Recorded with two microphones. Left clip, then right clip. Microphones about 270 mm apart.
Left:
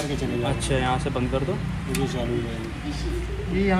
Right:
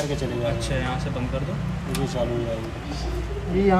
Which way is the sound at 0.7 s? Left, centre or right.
Centre.